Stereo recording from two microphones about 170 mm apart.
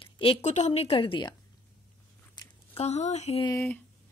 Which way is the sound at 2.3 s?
35° left (ahead or behind).